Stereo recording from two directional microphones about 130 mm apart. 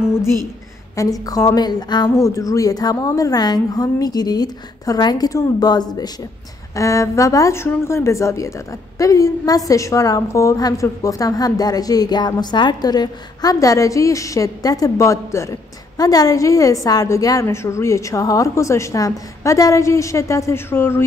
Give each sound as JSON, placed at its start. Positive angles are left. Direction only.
{"t": 0.9, "sound": "a woman's voice", "side_deg": 30}